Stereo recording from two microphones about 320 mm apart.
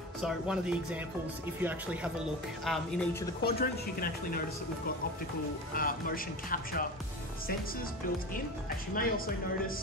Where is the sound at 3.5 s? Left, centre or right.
Left.